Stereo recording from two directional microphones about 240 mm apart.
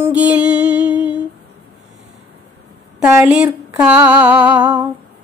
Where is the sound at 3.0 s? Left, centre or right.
Centre.